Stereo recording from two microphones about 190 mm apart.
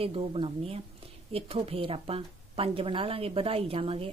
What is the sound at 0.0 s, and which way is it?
A woman's voice, 30° right (ahead or behind).